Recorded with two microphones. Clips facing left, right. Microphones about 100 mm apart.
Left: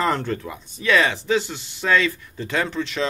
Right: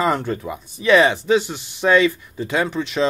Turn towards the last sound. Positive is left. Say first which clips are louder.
# right 3 dB
turn(degrees=-15)  # may be behind; listen again after turning